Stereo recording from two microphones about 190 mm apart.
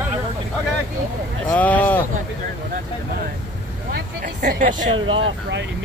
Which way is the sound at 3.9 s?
45° right (ahead or behind).